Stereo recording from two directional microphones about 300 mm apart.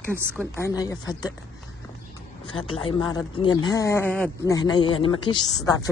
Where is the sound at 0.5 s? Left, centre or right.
Centre.